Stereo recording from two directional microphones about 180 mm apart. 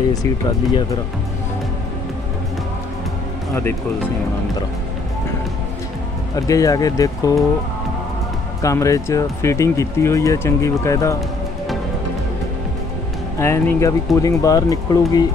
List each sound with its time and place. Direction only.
6.3 s speech: 20° left (ahead or behind)
8.6 s speech: 15° left (ahead or behind)
13.4 s speech: 15° left (ahead or behind)